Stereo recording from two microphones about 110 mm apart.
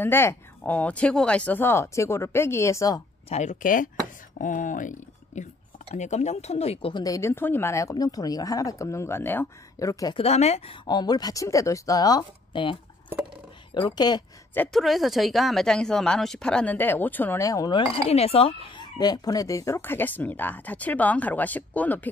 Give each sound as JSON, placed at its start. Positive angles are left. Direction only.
{"t": 0.0, "sound": "speech", "side_deg": 20}
{"t": 3.3, "sound": "speech", "side_deg": 90}
{"t": 5.3, "sound": "speech", "side_deg": 90}
{"t": 6.9, "sound": "speech", "side_deg": 35}
{"t": 7.2, "sound": "speech", "side_deg": 20}
{"t": 9.8, "sound": "speech", "side_deg": 30}
{"t": 10.1, "sound": "speech", "side_deg": 75}
{"t": 10.9, "sound": "speech", "side_deg": 40}
{"t": 13.7, "sound": "speech", "side_deg": 40}
{"t": 14.7, "sound": "speech", "side_deg": 0}
{"t": 17.4, "sound": "speech", "side_deg": 30}
{"t": 17.7, "sound": "speech", "side_deg": 65}